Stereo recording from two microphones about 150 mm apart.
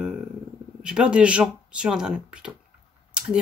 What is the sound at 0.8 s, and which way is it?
Speech, 5° right (ahead or behind).